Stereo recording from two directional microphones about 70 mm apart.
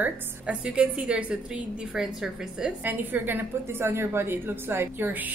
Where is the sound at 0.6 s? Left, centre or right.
Centre.